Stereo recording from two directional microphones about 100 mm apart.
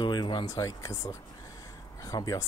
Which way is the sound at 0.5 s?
30° left (ahead or behind).